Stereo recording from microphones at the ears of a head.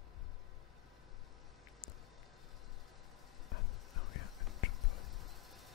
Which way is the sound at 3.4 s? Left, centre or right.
Left.